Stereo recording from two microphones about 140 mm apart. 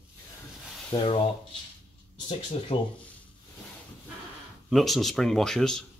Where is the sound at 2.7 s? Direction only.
40° left (ahead or behind).